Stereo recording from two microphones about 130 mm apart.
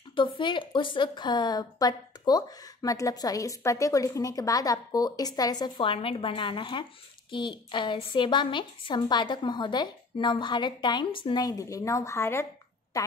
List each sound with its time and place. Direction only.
0.1 s a woman's voice: 40° left (ahead or behind)
5.8 s speech: 45° left (ahead or behind)
11.4 s a woman's voice: 25° left (ahead or behind)